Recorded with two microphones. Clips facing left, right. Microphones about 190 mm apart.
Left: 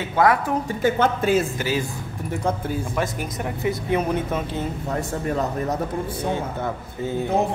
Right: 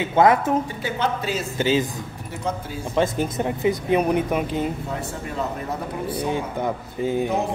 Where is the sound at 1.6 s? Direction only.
25° right (ahead or behind).